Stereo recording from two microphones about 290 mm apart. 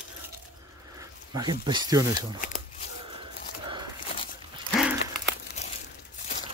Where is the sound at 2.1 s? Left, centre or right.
Left.